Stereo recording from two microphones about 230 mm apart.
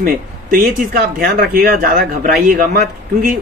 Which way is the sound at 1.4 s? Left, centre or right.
Right.